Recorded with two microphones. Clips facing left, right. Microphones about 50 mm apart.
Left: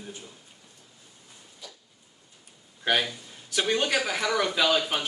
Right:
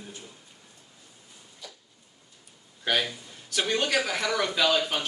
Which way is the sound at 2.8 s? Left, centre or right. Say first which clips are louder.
Left 1 dB; centre.